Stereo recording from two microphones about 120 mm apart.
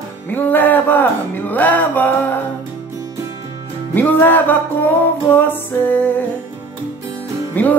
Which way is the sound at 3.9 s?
15° left (ahead or behind).